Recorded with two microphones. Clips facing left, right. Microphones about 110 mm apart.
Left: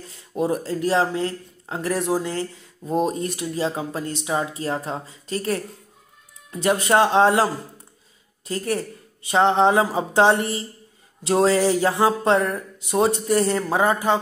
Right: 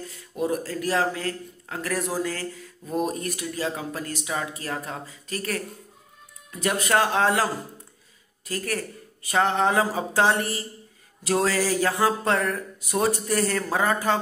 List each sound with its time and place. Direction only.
0.0 s speech: 25° left (ahead or behind)
8.5 s speech: 25° left (ahead or behind)